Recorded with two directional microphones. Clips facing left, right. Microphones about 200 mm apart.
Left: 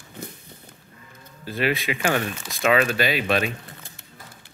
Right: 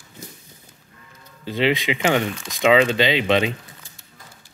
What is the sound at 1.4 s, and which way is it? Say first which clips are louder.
Speech: right 4 dB; 20° right (ahead or behind).